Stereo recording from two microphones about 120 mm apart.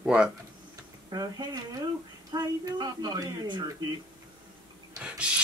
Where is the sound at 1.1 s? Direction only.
35° right (ahead or behind).